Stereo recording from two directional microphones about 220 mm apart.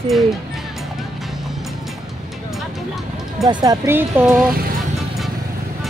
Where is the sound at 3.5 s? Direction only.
15° right (ahead or behind).